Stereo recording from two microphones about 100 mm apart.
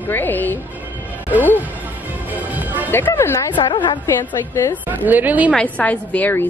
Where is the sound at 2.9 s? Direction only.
20° left (ahead or behind).